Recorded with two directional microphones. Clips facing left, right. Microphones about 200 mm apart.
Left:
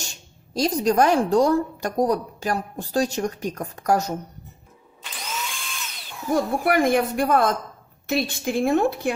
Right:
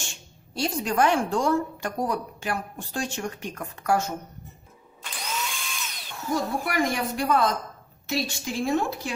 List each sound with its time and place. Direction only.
0.0 s speech: 40° left (ahead or behind)
5.0 s drill: centre (ahead or behind)
6.3 s a woman's voice: 55° left (ahead or behind)